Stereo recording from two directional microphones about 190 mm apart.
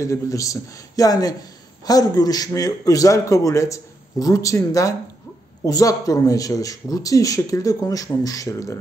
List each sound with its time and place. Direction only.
0.0 s a man's voice: 15° left (ahead or behind)